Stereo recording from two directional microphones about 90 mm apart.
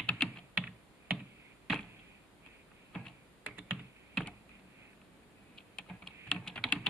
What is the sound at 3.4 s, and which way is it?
Computer keyboard, 20° right (ahead or behind).